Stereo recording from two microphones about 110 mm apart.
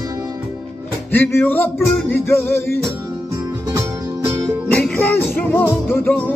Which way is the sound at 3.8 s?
25° right (ahead or behind).